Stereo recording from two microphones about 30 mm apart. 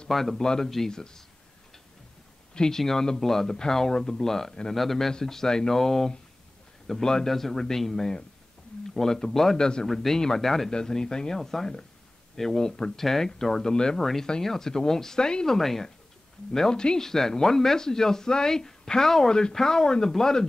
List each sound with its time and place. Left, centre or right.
0.1 s speech: centre
0.4 s speech: left
2.5 s speech: left
3.2 s speech: centre
7.2 s speech: centre
9.6 s speech: left
9.8 s speech: centre
10.9 s speech: left
13.6 s speech: left
13.9 s speech: centre
16.5 s speech: left
17.0 s speech: centre